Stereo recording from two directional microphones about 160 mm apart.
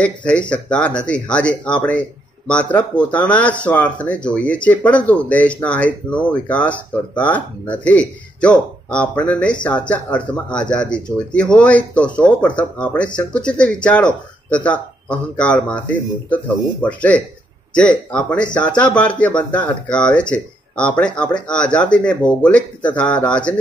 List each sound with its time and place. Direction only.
0.0 s speech: 10° left (ahead or behind)